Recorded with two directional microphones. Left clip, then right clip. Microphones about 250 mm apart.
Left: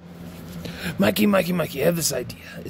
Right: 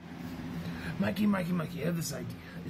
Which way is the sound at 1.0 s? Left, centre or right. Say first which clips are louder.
Left 13 dB; left.